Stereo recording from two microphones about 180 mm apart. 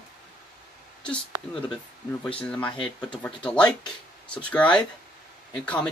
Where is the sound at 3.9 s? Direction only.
5° left (ahead or behind).